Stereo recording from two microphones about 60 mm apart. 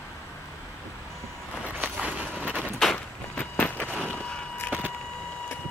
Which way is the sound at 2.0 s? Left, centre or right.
Right.